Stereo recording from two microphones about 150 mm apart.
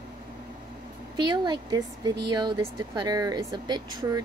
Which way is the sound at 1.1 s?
30° right (ahead or behind).